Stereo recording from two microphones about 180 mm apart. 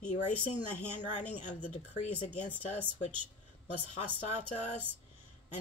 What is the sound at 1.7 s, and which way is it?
Speech, 40° left (ahead or behind).